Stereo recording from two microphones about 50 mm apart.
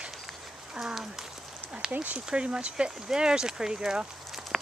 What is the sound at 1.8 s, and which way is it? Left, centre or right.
Speech, right.